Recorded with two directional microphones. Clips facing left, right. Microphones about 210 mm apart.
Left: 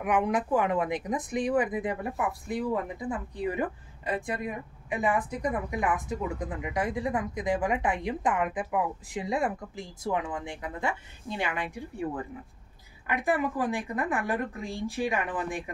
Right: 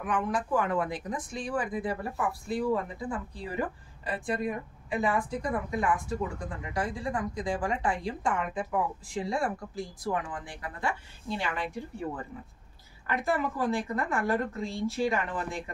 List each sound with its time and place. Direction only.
0.0 s a woman's voice: 15° left (ahead or behind)